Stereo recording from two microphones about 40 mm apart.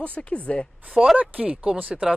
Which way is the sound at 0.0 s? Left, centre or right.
Left.